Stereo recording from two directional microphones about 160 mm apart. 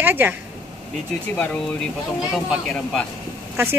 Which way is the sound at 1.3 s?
5° left (ahead or behind).